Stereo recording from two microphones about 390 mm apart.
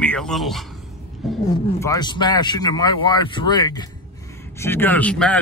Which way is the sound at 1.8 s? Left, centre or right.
Centre.